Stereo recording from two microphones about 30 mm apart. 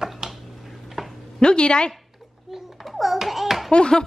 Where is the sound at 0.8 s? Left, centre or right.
Centre.